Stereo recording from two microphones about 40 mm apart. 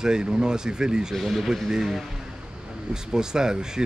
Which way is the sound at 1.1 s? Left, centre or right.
Centre.